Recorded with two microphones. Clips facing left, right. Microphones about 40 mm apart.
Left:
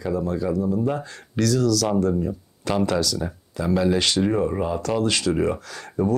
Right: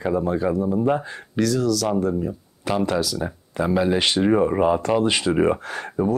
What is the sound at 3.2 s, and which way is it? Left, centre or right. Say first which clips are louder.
Speech: right 3 dB; right.